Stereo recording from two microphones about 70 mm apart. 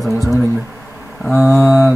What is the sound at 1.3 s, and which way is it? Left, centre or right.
Speech, left.